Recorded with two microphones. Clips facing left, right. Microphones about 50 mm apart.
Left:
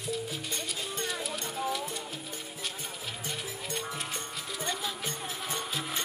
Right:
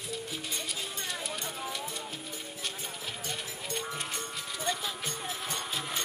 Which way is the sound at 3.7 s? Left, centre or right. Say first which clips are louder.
Right 1 dB; centre.